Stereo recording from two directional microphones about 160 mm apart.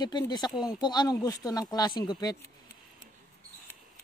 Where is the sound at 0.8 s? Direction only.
25° left (ahead or behind).